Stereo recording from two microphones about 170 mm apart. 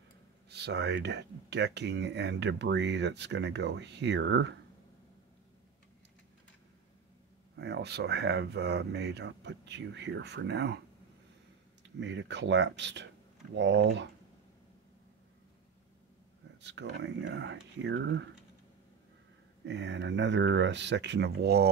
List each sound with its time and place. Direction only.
0.5 s speech: 80° right
7.5 s speech: 80° right
11.8 s speech: 90° right
16.6 s speech: 90° right
19.6 s speech: 90° right; by 21.6 s 70° right (ahead or behind)